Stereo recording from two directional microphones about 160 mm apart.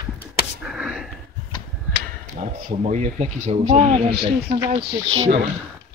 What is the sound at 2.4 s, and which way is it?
Speech, 45° right (ahead or behind).